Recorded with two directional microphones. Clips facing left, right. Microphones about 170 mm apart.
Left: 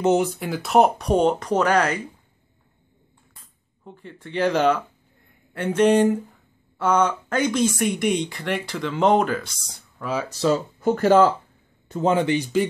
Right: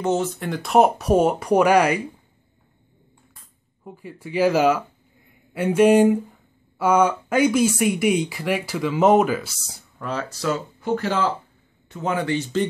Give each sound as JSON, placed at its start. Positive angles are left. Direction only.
{"t": 0.0, "sound": "speech", "side_deg": 15}
{"t": 0.4, "sound": "speech", "side_deg": 5}
{"t": 3.8, "sound": "speech", "side_deg": -5}
{"t": 10.8, "sound": "speech", "side_deg": 45}
{"t": 11.9, "sound": "speech", "side_deg": 30}